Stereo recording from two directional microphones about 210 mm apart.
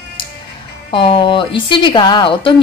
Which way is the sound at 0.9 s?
25° left (ahead or behind).